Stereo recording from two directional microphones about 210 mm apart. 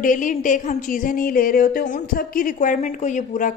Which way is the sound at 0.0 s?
40° left (ahead or behind).